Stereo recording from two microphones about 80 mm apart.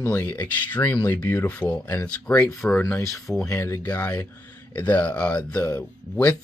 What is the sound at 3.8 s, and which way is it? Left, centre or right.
Speech, centre.